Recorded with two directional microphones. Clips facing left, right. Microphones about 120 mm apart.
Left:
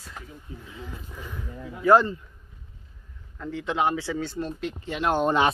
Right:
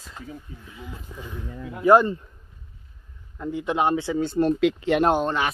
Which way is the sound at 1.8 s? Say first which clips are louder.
Right 2 dB; 15° right (ahead or behind).